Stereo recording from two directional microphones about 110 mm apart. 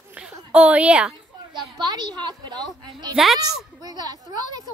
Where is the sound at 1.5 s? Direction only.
40° right (ahead or behind).